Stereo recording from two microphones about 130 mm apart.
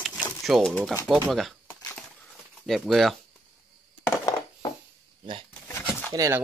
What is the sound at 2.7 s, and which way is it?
Speech, centre (ahead or behind).